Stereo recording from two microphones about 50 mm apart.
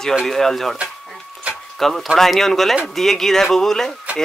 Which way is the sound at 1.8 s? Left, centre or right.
Centre.